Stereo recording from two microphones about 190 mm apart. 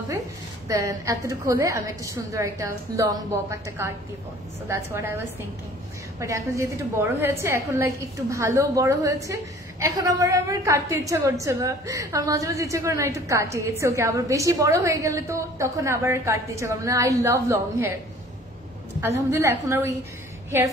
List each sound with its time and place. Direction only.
0.7 s a woman's voice: 15° right (ahead or behind)
18.9 s a woman's voice: 15° right (ahead or behind)